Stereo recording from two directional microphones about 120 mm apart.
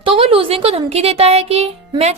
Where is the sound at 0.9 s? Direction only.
60° right (ahead or behind).